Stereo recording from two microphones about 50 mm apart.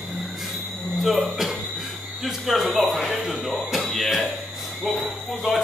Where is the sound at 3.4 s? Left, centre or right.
Centre.